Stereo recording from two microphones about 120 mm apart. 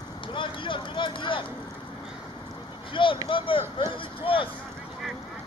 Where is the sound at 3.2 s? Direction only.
45° left (ahead or behind).